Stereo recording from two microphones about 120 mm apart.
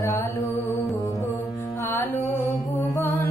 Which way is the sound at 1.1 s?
25° left (ahead or behind).